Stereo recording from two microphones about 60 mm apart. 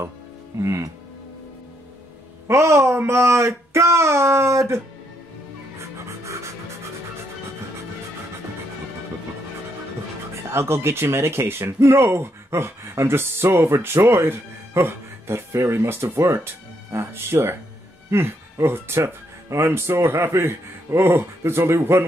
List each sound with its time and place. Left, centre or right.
0.6 s speech: right
2.4 s speech: right
5.8 s music: right
10.5 s speech: right